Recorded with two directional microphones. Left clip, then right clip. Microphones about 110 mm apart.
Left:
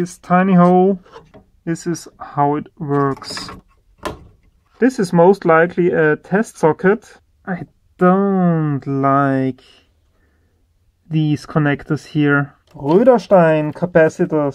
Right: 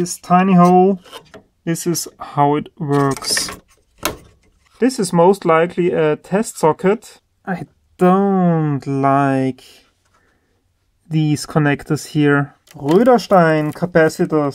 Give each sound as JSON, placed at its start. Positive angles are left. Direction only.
{"t": 0.0, "sound": "speech", "side_deg": -20}
{"t": 1.1, "sound": "speech", "side_deg": -40}
{"t": 4.7, "sound": "speech", "side_deg": 0}
{"t": 8.2, "sound": "speech", "side_deg": 10}
{"t": 8.7, "sound": "speech", "side_deg": -10}
{"t": 11.1, "sound": "speech", "side_deg": -5}